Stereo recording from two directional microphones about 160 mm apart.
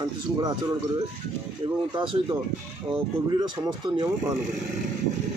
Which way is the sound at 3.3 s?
25° right (ahead or behind).